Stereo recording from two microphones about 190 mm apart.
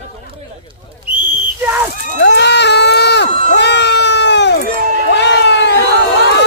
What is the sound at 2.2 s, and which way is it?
Crowd, 65° left (ahead or behind).